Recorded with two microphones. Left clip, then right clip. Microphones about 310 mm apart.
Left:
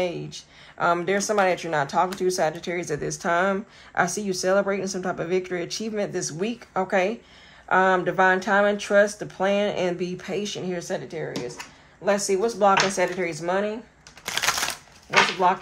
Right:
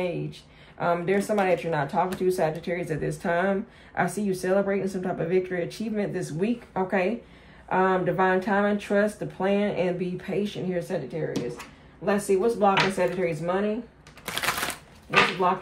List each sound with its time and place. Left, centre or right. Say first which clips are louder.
0.0 s speech: left 2 dB; left
12.0 s speech: left 1 dB; left
14.2 s a sound: left 3 dB; centre